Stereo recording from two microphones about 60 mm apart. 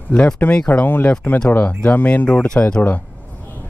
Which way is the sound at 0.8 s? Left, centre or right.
Left.